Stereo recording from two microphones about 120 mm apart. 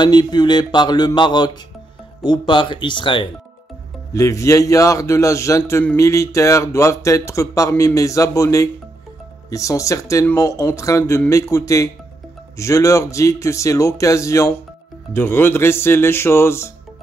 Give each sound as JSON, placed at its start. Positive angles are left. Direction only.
{"t": 0.0, "sound": "speech", "side_deg": 35}
{"t": 4.1, "sound": "a man's voice", "side_deg": 25}